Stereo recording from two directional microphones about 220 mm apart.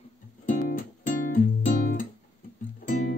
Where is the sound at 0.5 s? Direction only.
40° left (ahead or behind).